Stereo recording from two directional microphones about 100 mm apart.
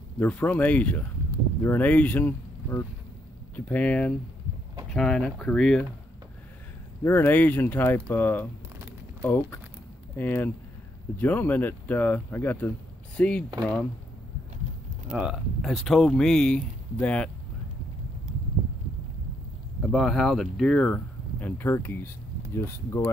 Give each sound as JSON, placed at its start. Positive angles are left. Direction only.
{"t": 0.2, "sound": "speech", "side_deg": 15}
{"t": 7.0, "sound": "speech", "side_deg": 25}
{"t": 10.1, "sound": "speech", "side_deg": 20}
{"t": 15.0, "sound": "speech", "side_deg": -10}
{"t": 19.8, "sound": "speech", "side_deg": 0}